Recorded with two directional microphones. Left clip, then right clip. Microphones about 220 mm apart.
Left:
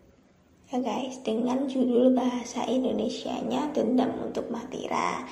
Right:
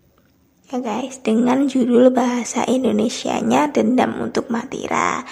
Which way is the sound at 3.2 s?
70° right (ahead or behind).